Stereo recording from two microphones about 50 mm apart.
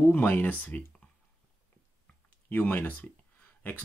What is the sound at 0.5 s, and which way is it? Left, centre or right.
Speech, left.